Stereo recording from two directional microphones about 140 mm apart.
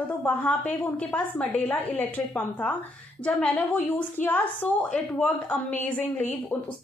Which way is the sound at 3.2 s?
10° left (ahead or behind).